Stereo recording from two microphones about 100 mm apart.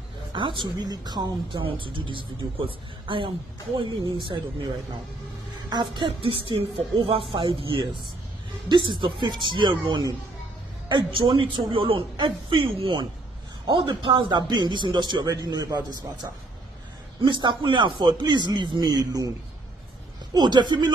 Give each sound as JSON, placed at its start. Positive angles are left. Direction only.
{"t": 0.3, "sound": "a man's voice", "side_deg": -55}
{"t": 1.6, "sound": "a woman's voice", "side_deg": -60}
{"t": 3.7, "sound": "a man's voice", "side_deg": -45}
{"t": 5.7, "sound": "a woman's voice", "side_deg": -50}
{"t": 8.6, "sound": "a man's voice", "side_deg": -50}
{"t": 10.9, "sound": "a woman's voice", "side_deg": -55}
{"t": 17.2, "sound": "a man's voice", "side_deg": -50}
{"t": 20.3, "sound": "a man's voice", "side_deg": -45}